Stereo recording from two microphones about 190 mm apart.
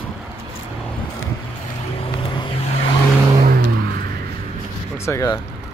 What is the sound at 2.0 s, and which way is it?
Vehicle, 30° left (ahead or behind).